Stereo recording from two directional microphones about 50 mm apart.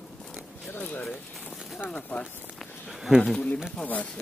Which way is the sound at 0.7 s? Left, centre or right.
Left.